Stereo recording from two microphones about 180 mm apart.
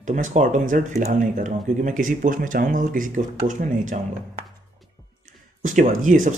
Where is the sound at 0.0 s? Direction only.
45° right (ahead or behind).